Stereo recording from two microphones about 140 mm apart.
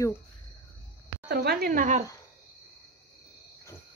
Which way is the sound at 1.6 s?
80° right.